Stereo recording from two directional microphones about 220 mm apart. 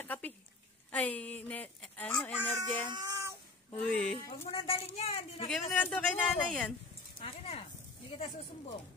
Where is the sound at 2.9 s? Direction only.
15° right (ahead or behind).